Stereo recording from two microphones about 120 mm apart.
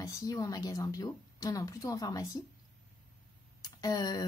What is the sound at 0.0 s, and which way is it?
A woman's voice, 30° left (ahead or behind).